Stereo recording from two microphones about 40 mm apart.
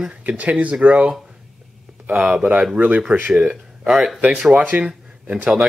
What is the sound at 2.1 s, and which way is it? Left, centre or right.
Speech, centre.